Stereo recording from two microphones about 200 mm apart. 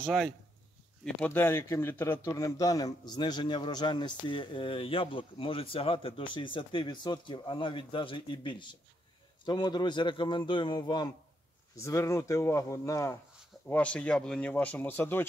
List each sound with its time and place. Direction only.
0.0 s speech: centre (ahead or behind)
1.0 s a man's voice: 10° left (ahead or behind)